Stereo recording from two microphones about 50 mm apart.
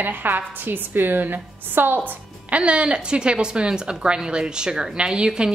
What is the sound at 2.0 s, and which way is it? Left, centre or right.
A woman's voice, right.